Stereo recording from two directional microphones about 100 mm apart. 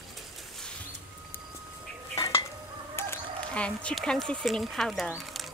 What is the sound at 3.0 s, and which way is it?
Duck, 25° left (ahead or behind).